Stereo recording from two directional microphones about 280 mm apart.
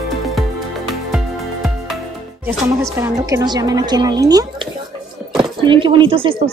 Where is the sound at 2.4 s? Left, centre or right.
Centre.